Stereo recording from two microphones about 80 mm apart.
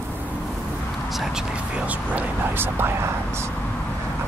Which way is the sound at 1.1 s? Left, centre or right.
Centre.